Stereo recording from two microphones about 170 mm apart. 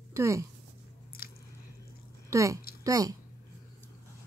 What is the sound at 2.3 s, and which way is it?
Speech, 20° right (ahead or behind).